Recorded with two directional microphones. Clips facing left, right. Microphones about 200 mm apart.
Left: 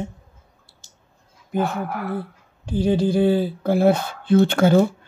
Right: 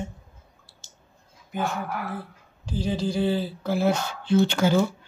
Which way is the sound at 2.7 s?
55° left (ahead or behind).